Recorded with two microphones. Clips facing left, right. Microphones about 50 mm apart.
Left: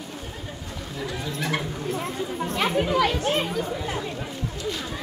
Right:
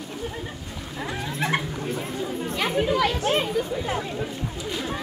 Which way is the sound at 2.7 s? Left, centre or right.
Centre.